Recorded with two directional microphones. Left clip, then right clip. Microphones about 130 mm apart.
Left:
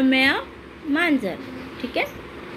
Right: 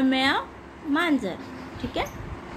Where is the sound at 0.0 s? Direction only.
15° left (ahead or behind).